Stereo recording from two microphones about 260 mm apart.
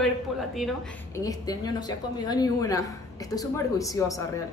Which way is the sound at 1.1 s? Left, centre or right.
Centre.